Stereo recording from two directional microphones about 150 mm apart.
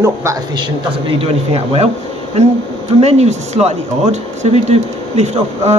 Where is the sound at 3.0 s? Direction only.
45° right (ahead or behind).